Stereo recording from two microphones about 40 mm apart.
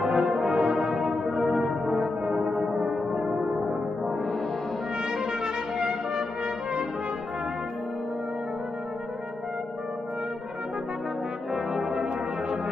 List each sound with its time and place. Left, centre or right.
0.0 s brass instrument: centre
1.3 s music: centre
5.1 s music: centre
11.5 s brass instrument: centre